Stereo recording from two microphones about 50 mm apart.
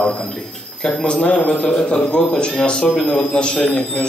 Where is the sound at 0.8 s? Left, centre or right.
Centre.